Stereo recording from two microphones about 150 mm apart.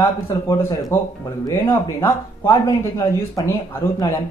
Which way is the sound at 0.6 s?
20° left (ahead or behind).